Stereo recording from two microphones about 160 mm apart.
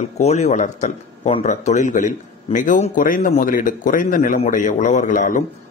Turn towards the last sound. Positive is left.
turn(degrees=55)  # may be behind; listen again after turning